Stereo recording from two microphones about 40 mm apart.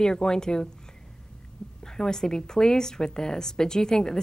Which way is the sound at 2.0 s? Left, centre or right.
Centre.